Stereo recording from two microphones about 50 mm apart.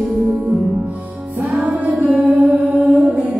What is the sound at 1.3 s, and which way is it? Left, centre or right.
Music, centre.